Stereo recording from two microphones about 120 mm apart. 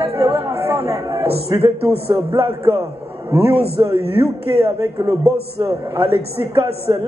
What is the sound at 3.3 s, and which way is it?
Speech, 55° right (ahead or behind).